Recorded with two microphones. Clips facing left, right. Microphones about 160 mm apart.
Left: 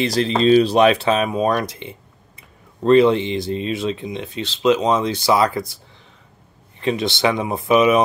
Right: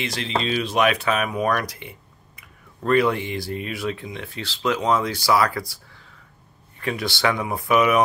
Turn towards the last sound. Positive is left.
turn(degrees=20)  # may be behind; listen again after turning